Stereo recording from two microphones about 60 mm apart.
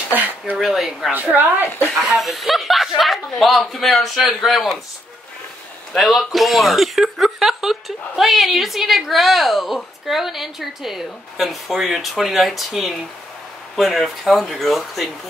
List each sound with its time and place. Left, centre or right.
0.1 s a sound: right
0.6 s a woman's voice: centre
1.1 s a woman's voice: right
2.0 s a man's voice: centre
5.9 s a woman's voice: centre